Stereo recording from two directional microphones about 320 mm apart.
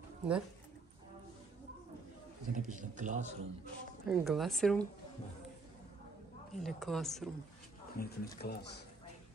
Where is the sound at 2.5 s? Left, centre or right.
Right.